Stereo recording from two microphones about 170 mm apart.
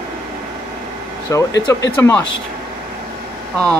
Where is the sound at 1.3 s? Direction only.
15° left (ahead or behind).